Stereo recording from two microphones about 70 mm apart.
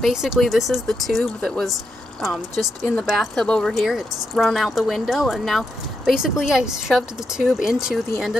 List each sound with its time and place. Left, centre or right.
0.0 s speech: centre
3.4 s speech: centre
3.7 s speech: centre